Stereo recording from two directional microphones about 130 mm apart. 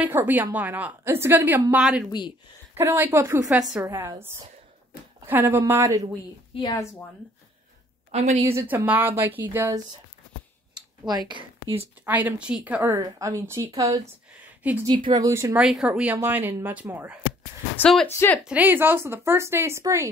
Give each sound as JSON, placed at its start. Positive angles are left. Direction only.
{"t": 0.0, "sound": "a woman's voice", "side_deg": -15}
{"t": 3.4, "sound": "a woman's voice", "side_deg": -5}
{"t": 3.8, "sound": "speech", "side_deg": -20}
{"t": 5.2, "sound": "a woman's voice", "side_deg": -15}
{"t": 6.7, "sound": "a woman's voice", "side_deg": 25}
{"t": 8.1, "sound": "a woman's voice", "side_deg": -55}
{"t": 8.5, "sound": "a woman's voice", "side_deg": -15}
{"t": 11.1, "sound": "a woman's voice", "side_deg": -35}
{"t": 12.1, "sound": "a woman's voice", "side_deg": -15}
{"t": 14.6, "sound": "a woman's voice", "side_deg": -10}
{"t": 15.0, "sound": "speech", "side_deg": -25}
{"t": 15.5, "sound": "a woman's voice", "side_deg": -5}
{"t": 18.0, "sound": "speech", "side_deg": 20}
{"t": 18.4, "sound": "speech", "side_deg": -10}